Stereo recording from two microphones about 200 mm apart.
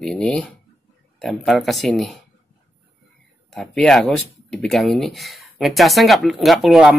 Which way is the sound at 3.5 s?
5° left (ahead or behind).